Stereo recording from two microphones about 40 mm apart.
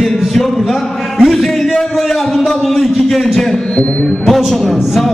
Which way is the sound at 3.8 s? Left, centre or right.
Left.